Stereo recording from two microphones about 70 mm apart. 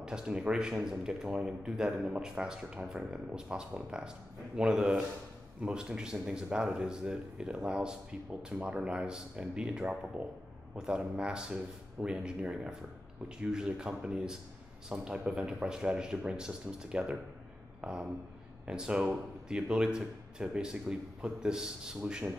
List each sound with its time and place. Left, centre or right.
0.0 s speech: centre